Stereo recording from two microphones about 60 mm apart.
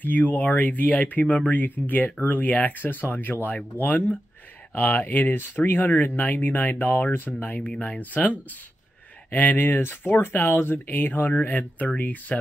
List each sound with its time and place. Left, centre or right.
0.0 s speech: left
9.3 s speech: left